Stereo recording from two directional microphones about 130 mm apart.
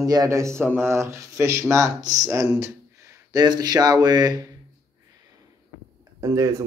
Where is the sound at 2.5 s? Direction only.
15° right (ahead or behind).